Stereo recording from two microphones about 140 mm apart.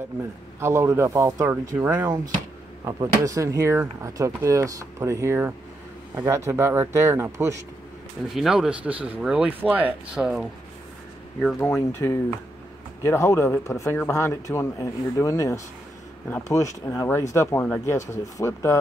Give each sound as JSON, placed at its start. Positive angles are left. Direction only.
{"t": 0.6, "sound": "a man's voice", "side_deg": -20}
{"t": 8.3, "sound": "speech", "side_deg": 0}
{"t": 11.6, "sound": "speech", "side_deg": 20}